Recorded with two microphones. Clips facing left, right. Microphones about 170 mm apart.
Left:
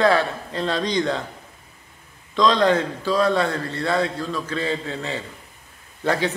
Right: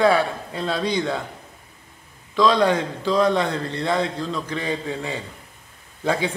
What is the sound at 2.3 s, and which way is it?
A man's voice, 10° right (ahead or behind).